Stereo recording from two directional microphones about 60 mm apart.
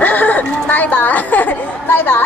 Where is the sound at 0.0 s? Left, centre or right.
Left.